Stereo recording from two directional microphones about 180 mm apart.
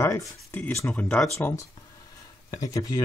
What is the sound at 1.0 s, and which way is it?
Speech, 5° left (ahead or behind).